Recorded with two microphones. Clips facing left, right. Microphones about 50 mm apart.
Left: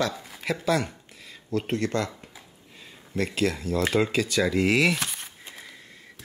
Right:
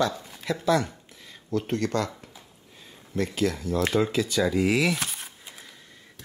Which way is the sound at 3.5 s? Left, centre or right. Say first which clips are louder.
Even; centre.